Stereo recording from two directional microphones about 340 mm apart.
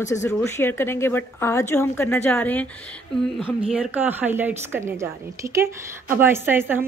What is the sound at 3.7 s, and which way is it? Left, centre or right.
A woman's voice, centre.